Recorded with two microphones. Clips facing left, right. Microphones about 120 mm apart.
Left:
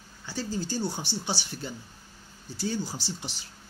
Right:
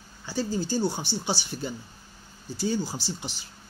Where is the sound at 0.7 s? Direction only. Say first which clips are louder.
Right 6 dB; 30° right (ahead or behind).